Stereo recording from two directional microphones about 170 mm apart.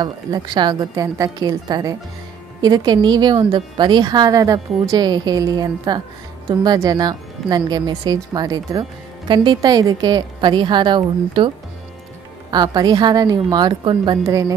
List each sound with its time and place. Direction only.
0.0 s speech: 25° right (ahead or behind)